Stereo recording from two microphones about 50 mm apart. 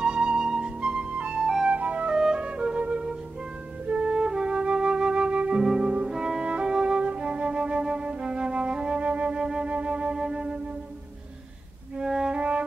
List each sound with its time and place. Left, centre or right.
0.0 s flute: centre
2.1 s music: centre
3.8 s flute: centre
5.6 s music: centre
12.0 s music: centre
12.4 s music: right